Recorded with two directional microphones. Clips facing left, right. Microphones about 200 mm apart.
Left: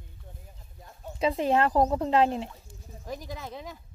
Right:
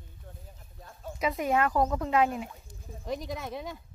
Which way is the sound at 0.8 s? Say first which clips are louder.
Left 4 dB; 25° left (ahead or behind).